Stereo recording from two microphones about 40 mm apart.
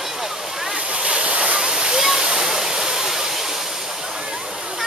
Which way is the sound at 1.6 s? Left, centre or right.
Centre.